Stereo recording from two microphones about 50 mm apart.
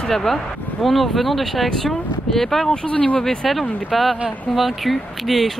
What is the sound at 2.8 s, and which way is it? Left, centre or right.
Speech, left.